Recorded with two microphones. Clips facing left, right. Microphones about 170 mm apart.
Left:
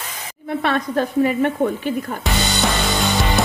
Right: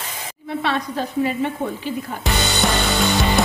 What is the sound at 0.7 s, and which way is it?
Speech, 50° left (ahead or behind).